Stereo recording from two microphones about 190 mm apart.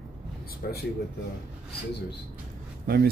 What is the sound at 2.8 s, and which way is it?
Speech, 55° right (ahead or behind).